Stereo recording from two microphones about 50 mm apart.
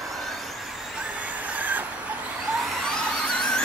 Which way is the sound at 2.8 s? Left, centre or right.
Centre.